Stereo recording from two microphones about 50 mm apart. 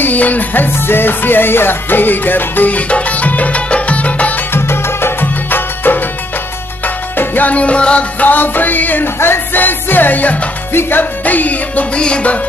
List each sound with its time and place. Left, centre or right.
0.0 s music: left
0.7 s music: left
4.6 s music: left
5.2 s music: left
7.2 s music: left
8.2 s music: left
10.7 s music: left